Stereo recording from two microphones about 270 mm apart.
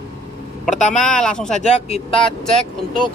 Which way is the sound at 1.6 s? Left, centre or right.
Left.